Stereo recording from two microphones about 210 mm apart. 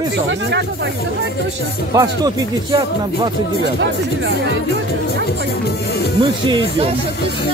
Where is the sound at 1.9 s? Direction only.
15° right (ahead or behind).